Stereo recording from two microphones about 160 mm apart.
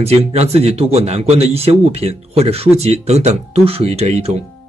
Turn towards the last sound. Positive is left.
turn(degrees=-40)  # may be behind; listen again after turning